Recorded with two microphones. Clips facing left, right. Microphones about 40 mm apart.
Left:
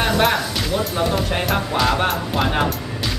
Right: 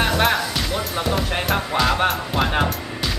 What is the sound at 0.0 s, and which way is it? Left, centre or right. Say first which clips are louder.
Speech: left 1 dB; centre.